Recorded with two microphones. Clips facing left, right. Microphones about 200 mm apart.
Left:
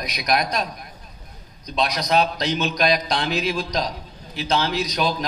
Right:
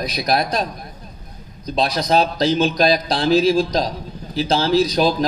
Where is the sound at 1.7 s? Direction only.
30° right (ahead or behind).